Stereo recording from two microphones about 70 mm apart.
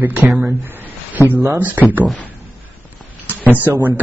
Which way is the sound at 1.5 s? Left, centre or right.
Right.